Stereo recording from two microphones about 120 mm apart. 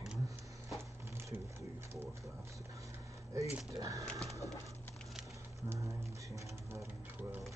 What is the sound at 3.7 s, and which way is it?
Speech, 30° right (ahead or behind).